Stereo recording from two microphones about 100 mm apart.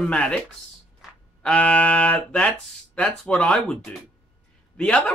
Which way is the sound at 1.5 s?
15° left (ahead or behind).